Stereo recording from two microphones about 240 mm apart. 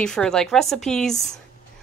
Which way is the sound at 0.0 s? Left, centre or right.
Centre.